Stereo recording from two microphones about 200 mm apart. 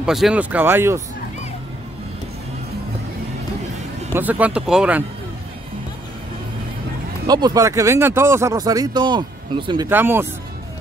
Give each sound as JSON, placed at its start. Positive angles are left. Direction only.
{"t": 0.0, "sound": "speech", "side_deg": -5}
{"t": 4.1, "sound": "speech", "side_deg": -10}
{"t": 7.2, "sound": "speech", "side_deg": -20}
{"t": 9.8, "sound": "speech", "side_deg": -10}